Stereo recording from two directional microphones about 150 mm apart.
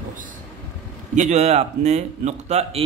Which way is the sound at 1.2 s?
50° right (ahead or behind).